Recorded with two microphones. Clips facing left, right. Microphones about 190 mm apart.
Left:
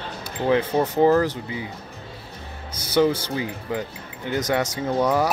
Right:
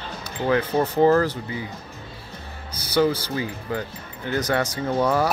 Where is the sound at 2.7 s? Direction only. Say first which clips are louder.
Left 1 dB; 25° left (ahead or behind).